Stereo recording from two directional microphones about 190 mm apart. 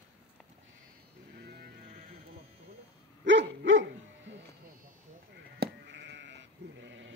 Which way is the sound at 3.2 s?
70° right (ahead or behind).